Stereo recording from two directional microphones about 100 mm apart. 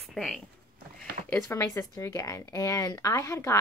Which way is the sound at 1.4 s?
30° left (ahead or behind).